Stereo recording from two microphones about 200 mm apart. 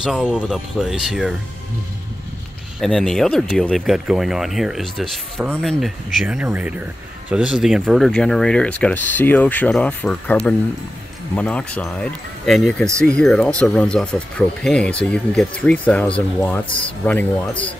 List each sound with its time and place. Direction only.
0.0 s speech: 5° right (ahead or behind)
2.8 s speech: centre (ahead or behind)